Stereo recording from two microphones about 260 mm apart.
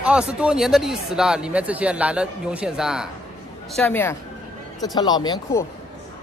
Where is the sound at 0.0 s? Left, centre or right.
Centre.